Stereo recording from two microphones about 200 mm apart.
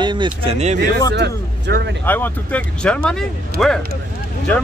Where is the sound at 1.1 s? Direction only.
60° right (ahead or behind).